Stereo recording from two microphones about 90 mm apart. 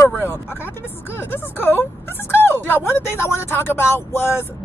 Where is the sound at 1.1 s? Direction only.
25° left (ahead or behind).